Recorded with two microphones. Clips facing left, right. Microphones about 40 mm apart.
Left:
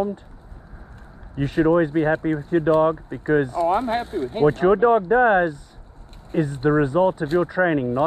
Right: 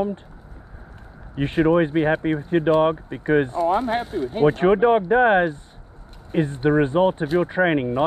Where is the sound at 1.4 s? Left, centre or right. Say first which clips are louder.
Even; right.